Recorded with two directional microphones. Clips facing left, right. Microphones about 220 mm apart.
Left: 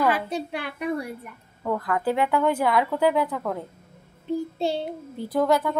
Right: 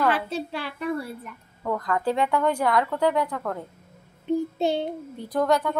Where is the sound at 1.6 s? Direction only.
5° left (ahead or behind).